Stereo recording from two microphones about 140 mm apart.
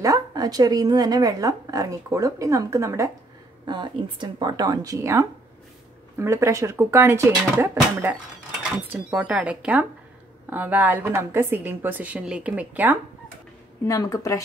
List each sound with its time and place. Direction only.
0.0 s speech: 25° right (ahead or behind)
3.6 s a woman's voice: 35° right (ahead or behind); by 12.9 s 10° right (ahead or behind)
13.8 s speech: 25° left (ahead or behind)